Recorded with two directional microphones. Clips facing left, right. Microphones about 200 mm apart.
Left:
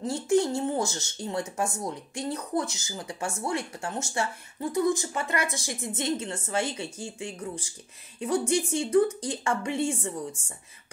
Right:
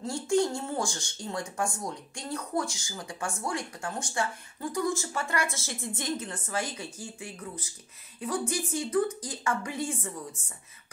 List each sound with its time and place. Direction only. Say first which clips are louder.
0.0 s speech: left 2 dB; 20° left (ahead or behind)